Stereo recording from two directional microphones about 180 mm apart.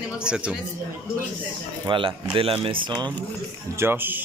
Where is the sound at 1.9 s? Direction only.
30° right (ahead or behind).